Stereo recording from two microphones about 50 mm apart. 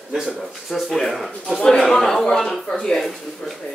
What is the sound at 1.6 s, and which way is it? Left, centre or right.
Speech, centre.